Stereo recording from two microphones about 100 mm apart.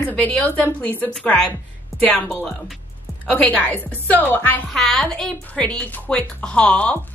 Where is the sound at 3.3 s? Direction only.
15° left (ahead or behind).